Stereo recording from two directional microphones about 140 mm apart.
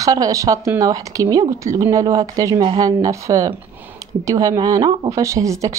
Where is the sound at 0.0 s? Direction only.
25° right (ahead or behind).